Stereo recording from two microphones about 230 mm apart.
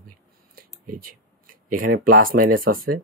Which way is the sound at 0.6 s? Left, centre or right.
Right.